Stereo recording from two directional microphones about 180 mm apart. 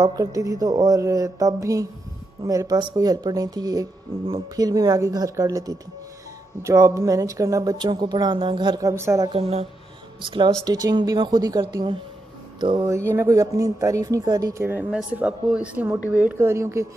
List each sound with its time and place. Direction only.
0.0 s speech: 20° right (ahead or behind)
9.3 s speech: 35° right (ahead or behind)
10.3 s speech: 25° right (ahead or behind)